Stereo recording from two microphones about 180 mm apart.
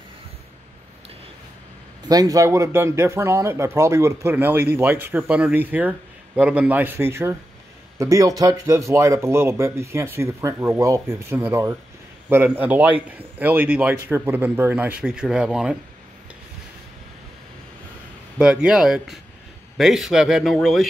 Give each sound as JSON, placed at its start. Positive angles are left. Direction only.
{"t": 2.0, "sound": "speech", "side_deg": -20}
{"t": 18.4, "sound": "speech", "side_deg": -5}